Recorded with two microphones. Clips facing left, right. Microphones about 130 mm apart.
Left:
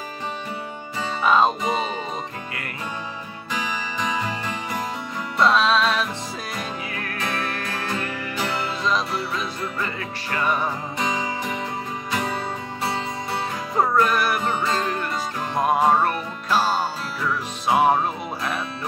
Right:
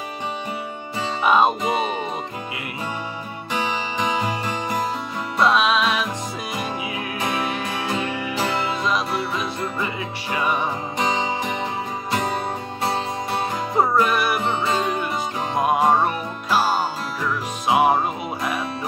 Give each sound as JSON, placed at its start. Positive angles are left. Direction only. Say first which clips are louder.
{"t": 1.2, "sound": "music", "louder": "right 1 dB", "side_deg": -15}
{"t": 5.4, "sound": "music", "louder": "even", "side_deg": -10}
{"t": 10.3, "sound": "music", "louder": "right 1 dB", "side_deg": -10}
{"t": 10.6, "sound": "music", "louder": "right 2 dB", "side_deg": -25}
{"t": 13.7, "sound": "music", "louder": "right 1 dB", "side_deg": -10}
{"t": 17.6, "sound": "music", "louder": "right 1 dB", "side_deg": -10}